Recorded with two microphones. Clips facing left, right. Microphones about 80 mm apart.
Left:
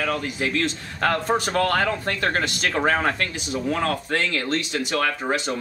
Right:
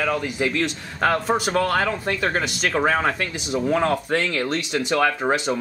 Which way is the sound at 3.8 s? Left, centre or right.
Right.